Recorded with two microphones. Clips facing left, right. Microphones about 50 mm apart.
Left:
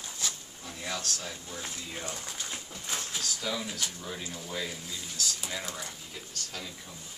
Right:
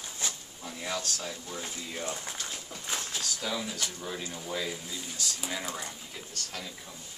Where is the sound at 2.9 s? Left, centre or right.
Centre.